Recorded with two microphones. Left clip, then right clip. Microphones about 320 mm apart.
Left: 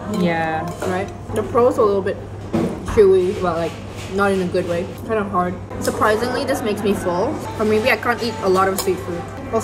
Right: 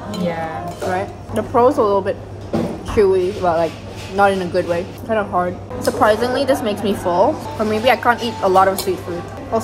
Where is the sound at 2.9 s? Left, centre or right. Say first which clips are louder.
Left 1 dB; centre.